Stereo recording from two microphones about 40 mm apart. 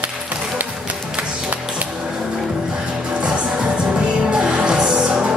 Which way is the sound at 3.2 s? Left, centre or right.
Right.